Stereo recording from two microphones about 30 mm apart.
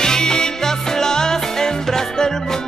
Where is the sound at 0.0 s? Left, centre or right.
Left.